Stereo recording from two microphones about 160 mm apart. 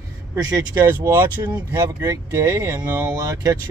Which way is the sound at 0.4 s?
20° right (ahead or behind).